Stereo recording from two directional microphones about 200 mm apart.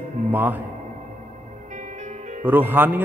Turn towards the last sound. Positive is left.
turn(degrees=-10)  # may be behind; listen again after turning